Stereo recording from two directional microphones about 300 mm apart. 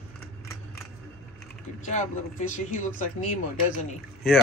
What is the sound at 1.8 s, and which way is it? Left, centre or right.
Speech, left.